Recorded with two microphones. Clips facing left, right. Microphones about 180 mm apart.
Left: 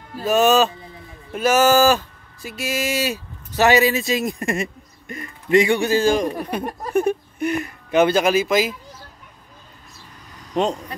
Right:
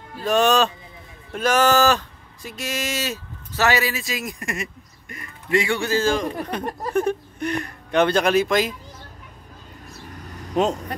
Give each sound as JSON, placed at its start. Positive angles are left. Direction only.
{"t": 0.2, "sound": "speech", "side_deg": 5}
{"t": 10.5, "sound": "speech", "side_deg": -5}